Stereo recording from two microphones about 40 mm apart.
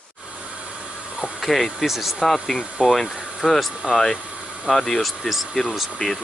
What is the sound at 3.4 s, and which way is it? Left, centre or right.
Speech, centre.